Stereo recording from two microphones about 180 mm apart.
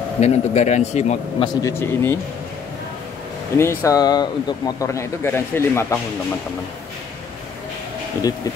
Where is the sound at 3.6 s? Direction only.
15° left (ahead or behind).